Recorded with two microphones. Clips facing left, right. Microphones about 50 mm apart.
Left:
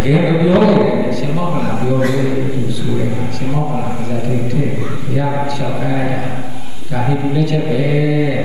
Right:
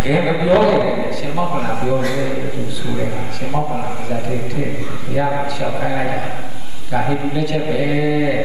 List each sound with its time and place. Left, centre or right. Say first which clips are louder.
0.0 s a man's voice: left 3 dB; centre
5.1 s a man's voice: even; centre